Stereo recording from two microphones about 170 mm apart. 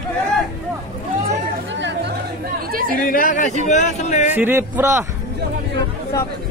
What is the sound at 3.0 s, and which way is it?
Speech, 55° left (ahead or behind).